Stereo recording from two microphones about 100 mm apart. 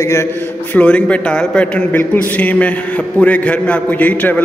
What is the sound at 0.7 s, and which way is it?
A man's voice, 15° left (ahead or behind).